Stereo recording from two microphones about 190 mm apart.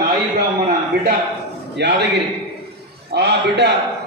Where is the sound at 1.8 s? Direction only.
65° right (ahead or behind).